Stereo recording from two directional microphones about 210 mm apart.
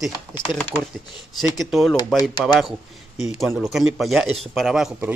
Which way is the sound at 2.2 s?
20° left (ahead or behind).